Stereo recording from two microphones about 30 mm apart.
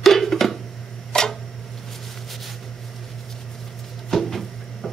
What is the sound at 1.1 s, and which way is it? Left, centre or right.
Tick-tock, left.